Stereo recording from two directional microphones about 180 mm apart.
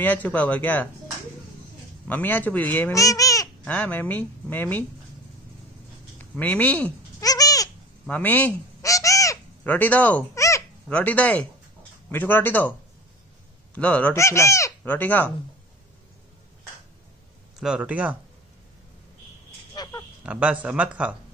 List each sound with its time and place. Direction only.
0.0 s speech: 10° left (ahead or behind)
2.0 s speech: 10° left (ahead or behind)
3.7 s speech: 10° left (ahead or behind)
6.1 s a sound: 10° left (ahead or behind)
7.2 s goat: 20° left (ahead or behind)
8.1 s bird: 10° left (ahead or behind)
10.9 s speech: 10° left (ahead or behind)
13.7 s speech: 10° left (ahead or behind)
17.6 s speech: 5° right (ahead or behind)
19.7 s a sound: 20° left (ahead or behind)
20.2 s speech: 10° right (ahead or behind)